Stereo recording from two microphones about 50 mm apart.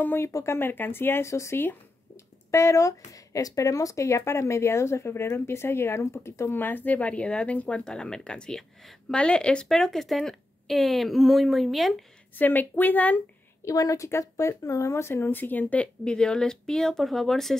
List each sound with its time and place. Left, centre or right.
0.2 s speech: left
0.6 s speech: left
1.2 s speech: left
3.6 s speech: left
6.5 s a woman's voice: left; by 9.7 s centre
9.7 s speech: centre
12.4 s speech: left
13.7 s speech: left
15.3 s speech: left
15.8 s speech: centre